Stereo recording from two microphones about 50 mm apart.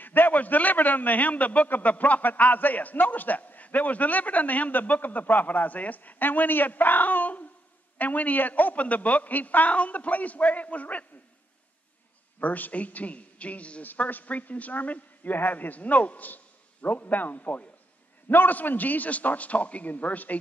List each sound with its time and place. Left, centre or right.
0.0 s a man's voice: left
12.4 s a man's voice: left